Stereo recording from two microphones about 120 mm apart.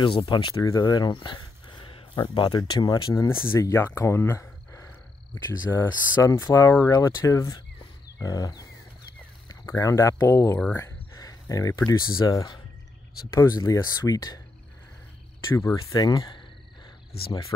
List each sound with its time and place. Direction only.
0.0 s speech: 45° left (ahead or behind)
15.5 s speech: 30° left (ahead or behind)